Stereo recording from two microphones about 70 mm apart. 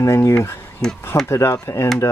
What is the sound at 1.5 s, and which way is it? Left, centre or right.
Speech, left.